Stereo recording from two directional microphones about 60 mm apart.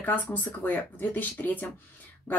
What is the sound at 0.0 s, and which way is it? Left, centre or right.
A woman's voice, left.